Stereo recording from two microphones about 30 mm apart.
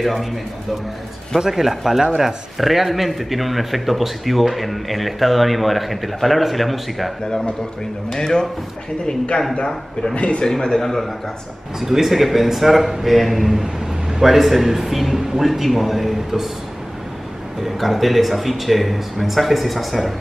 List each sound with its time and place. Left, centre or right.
0.0 s speech: centre
1.5 s speech: centre
8.2 s speech: left
10.1 s a man's voice: left
10.4 s a man's voice: centre
11.8 s speech: centre
17.6 s speech: centre